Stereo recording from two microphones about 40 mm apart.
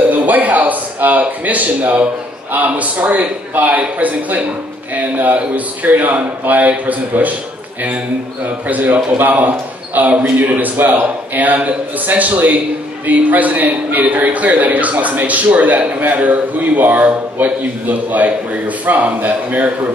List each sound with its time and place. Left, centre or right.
0.1 s a man's voice: right
8.6 s a man's voice: right
16.0 s a man's voice: right